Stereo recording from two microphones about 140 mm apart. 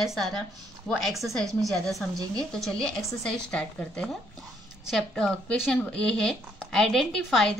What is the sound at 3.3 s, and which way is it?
A woman's voice, 5° left (ahead or behind).